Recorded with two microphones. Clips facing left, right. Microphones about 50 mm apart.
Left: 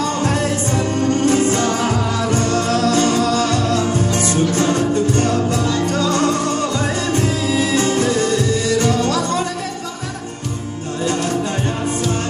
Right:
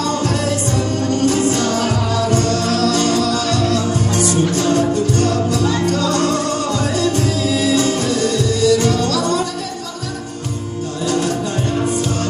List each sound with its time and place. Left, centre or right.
0.2 s music: left